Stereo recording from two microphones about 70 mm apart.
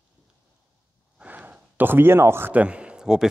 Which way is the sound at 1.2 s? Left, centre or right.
Centre.